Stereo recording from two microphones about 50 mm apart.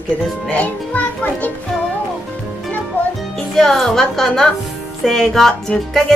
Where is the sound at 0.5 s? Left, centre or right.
Left.